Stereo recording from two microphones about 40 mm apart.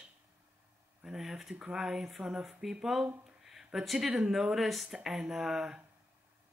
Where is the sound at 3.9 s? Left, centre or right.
Centre.